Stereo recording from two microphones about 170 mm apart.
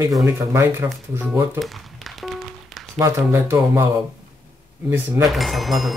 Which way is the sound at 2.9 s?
15° right (ahead or behind).